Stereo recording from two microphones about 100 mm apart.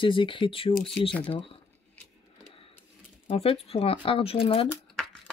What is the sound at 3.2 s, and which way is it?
Speech, 75° left (ahead or behind).